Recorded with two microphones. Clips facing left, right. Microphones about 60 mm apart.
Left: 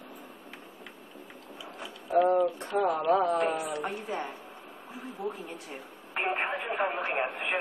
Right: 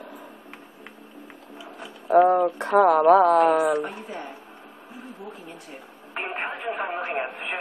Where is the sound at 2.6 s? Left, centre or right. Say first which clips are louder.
Right 11 dB; right.